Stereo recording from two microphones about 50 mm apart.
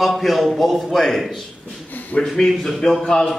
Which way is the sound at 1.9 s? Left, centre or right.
Left.